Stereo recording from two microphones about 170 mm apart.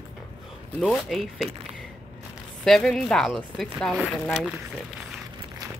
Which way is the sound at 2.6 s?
Centre (ahead or behind).